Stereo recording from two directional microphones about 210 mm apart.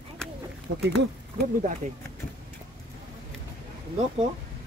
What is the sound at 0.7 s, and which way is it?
Speech, 60° right (ahead or behind).